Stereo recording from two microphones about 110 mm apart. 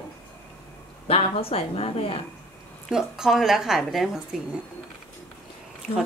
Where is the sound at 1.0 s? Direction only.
60° left (ahead or behind).